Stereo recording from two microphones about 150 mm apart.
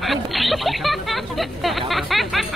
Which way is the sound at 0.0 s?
Centre (ahead or behind).